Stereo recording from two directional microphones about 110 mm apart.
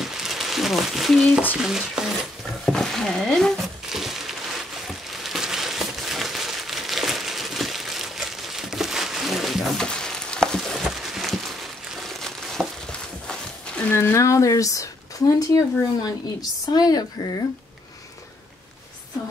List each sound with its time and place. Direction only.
0.0 s crumpling: 5° right (ahead or behind)
1.5 s speech: 5° right (ahead or behind)
2.6 s a sound: 5° left (ahead or behind)
13.8 s speech: 20° left (ahead or behind)